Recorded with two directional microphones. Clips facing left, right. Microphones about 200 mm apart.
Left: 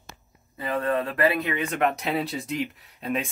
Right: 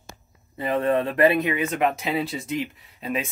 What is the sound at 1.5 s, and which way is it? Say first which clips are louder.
Speech: right 2 dB; 5° right (ahead or behind).